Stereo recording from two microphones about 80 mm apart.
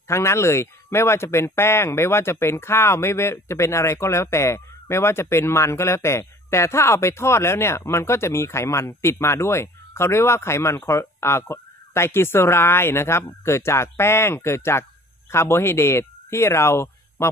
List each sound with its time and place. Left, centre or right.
0.1 s a man's voice: left